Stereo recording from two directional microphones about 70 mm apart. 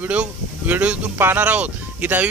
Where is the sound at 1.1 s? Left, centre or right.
Right.